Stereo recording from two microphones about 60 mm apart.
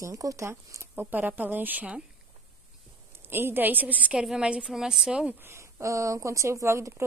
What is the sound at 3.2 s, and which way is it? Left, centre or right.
A woman's voice, right.